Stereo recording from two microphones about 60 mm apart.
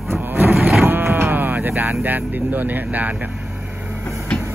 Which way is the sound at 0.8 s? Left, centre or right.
Right.